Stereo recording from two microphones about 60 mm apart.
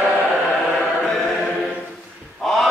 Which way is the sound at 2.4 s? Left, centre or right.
Centre.